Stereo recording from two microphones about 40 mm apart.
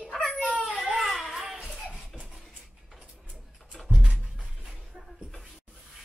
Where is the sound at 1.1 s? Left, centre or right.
Centre.